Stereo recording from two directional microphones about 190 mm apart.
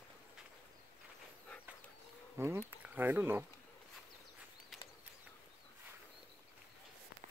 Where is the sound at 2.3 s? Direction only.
15° right (ahead or behind).